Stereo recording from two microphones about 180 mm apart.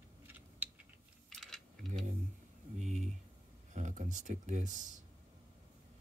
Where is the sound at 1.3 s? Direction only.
Centre (ahead or behind).